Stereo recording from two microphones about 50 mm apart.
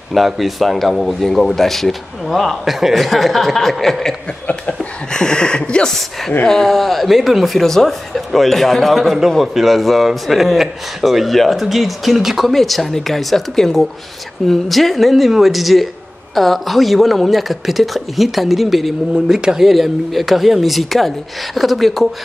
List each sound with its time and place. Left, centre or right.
0.1 s a man's voice: centre
4.7 s a man's voice: centre
19.1 s a man's voice: centre